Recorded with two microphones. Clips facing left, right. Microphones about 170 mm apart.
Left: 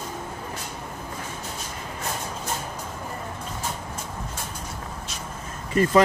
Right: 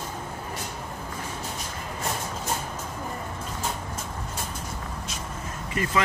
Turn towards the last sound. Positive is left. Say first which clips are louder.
# left 8 dB
turn(degrees=40)  # may be behind; listen again after turning